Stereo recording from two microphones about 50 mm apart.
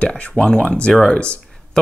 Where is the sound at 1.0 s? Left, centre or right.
Left.